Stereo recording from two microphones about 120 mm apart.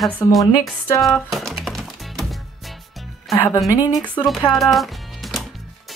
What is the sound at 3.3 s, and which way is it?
Speech, 25° left (ahead or behind).